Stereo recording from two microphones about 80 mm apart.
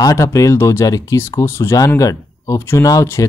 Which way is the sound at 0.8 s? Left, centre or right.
Left.